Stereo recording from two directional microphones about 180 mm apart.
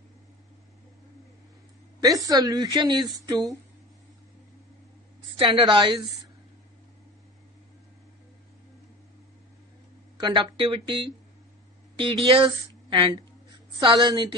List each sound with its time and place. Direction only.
2.0 s a woman's voice: 20° right (ahead or behind)
5.4 s a woman's voice: 30° right (ahead or behind)
10.2 s a woman's voice: 25° right (ahead or behind)